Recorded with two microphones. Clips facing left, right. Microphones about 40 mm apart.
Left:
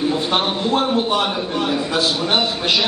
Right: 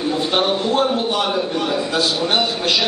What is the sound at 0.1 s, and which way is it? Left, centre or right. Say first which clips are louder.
A man's voice: right 1 dB; centre.